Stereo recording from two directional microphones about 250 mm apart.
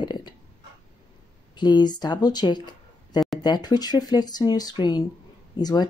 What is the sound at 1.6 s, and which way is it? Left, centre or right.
Speech, centre.